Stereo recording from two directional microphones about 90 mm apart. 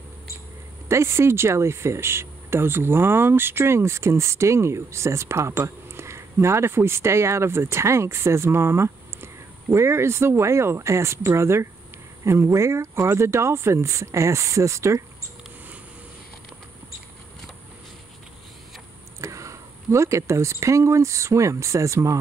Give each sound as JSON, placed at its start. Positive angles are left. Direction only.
{"t": 0.8, "sound": "speech", "side_deg": -30}
{"t": 19.2, "sound": "speech", "side_deg": -35}